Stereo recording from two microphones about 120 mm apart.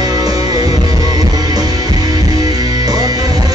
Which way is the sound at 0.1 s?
30° right (ahead or behind).